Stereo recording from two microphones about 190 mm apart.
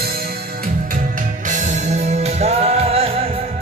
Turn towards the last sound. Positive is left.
turn(degrees=-30)  # may be behind; listen again after turning